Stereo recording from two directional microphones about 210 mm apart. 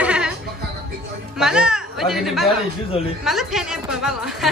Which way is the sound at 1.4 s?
5° right (ahead or behind).